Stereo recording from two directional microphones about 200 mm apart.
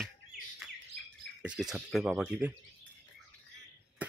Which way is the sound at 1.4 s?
5° right (ahead or behind).